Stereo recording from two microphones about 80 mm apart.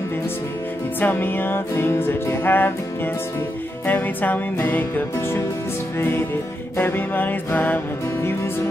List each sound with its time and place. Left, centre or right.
1.0 s music: left
3.8 s music: left